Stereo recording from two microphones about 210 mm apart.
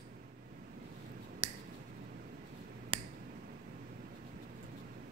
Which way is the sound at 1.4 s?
30° right (ahead or behind).